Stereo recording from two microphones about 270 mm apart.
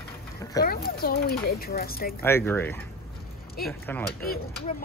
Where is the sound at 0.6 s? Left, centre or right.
Left.